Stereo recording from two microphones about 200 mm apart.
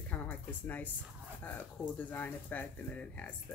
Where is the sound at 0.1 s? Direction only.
10° left (ahead or behind).